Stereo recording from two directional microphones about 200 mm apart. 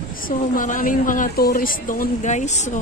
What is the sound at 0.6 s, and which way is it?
A woman's voice, 40° left (ahead or behind).